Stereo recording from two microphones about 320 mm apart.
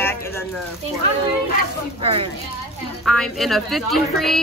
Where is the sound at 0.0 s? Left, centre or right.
Centre.